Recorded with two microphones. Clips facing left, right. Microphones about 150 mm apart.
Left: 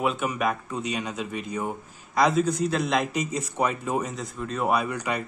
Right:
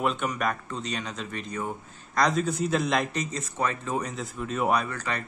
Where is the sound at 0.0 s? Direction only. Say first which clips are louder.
Left 2 dB; 5° left (ahead or behind).